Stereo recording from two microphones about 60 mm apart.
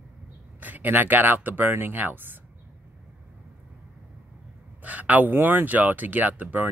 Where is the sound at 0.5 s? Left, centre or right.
Right.